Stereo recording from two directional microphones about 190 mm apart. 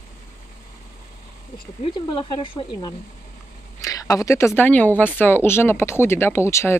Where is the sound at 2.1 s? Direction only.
25° left (ahead or behind).